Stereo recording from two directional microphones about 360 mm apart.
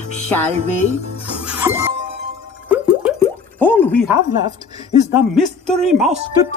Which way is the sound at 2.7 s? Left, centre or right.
Centre.